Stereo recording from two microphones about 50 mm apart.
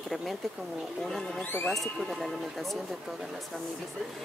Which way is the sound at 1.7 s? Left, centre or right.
Centre.